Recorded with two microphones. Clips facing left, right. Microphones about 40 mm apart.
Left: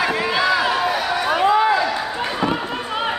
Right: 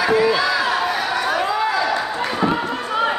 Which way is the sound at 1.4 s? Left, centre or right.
Left.